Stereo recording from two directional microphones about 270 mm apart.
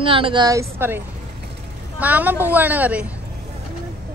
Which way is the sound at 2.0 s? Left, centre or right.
Centre.